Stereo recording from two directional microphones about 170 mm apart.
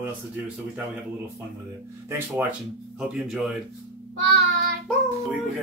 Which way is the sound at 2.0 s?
15° right (ahead or behind).